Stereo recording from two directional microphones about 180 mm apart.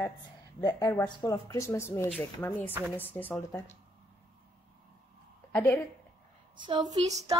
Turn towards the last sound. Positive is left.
turn(degrees=-20)  # may be behind; listen again after turning